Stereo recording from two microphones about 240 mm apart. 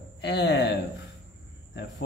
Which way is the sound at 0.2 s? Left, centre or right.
Left.